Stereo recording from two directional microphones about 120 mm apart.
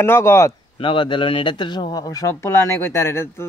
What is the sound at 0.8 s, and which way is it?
Speech, 45° left (ahead or behind).